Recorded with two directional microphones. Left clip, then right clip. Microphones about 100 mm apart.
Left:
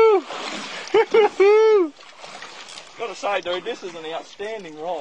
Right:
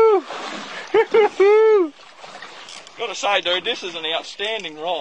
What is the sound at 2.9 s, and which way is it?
Speech, 20° right (ahead or behind).